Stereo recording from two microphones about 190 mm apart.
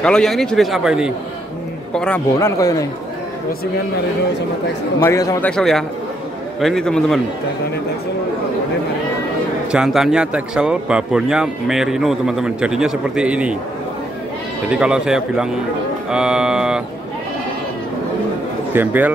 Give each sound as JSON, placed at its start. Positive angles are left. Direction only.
{"t": 0.0, "sound": "speech", "side_deg": 5}
{"t": 2.3, "sound": "a man's voice", "side_deg": 15}
{"t": 5.0, "sound": "a man's voice", "side_deg": 15}
{"t": 5.5, "sound": "speech", "side_deg": 0}
{"t": 9.7, "sound": "speech", "side_deg": -5}
{"t": 14.7, "sound": "speech", "side_deg": -5}
{"t": 16.1, "sound": "music", "side_deg": -5}
{"t": 18.7, "sound": "a man's voice", "side_deg": -10}